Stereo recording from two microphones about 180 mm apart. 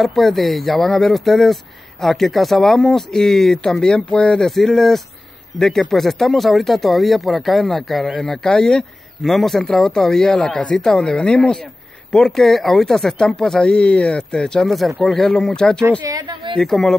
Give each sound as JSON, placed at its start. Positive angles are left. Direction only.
{"t": 0.0, "sound": "speech", "side_deg": 0}
{"t": 16.1, "sound": "a woman's voice", "side_deg": -25}
{"t": 16.5, "sound": "speech", "side_deg": 0}